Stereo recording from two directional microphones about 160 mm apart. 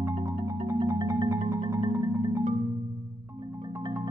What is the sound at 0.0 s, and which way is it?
Marimba, 20° right (ahead or behind).